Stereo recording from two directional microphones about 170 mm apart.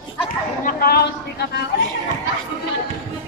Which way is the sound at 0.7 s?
60° left (ahead or behind).